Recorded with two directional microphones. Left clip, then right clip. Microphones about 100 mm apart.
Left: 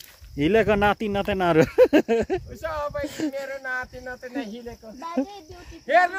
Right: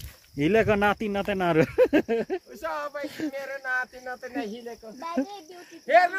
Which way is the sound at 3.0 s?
80° left.